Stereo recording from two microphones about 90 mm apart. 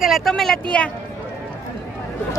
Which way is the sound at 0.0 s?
Centre (ahead or behind).